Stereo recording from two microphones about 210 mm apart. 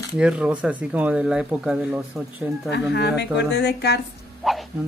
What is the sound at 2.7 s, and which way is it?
Speech, 55° left (ahead or behind).